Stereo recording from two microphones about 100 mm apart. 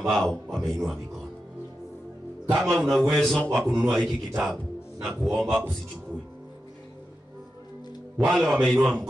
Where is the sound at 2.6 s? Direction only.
5° left (ahead or behind).